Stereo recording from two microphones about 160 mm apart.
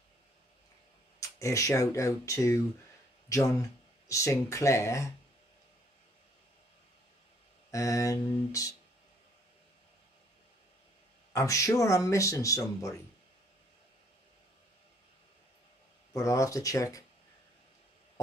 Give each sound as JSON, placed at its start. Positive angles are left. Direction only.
{"t": 1.2, "sound": "speech", "side_deg": 20}
{"t": 7.7, "sound": "speech", "side_deg": 20}
{"t": 11.3, "sound": "speech", "side_deg": 20}
{"t": 16.1, "sound": "speech", "side_deg": 20}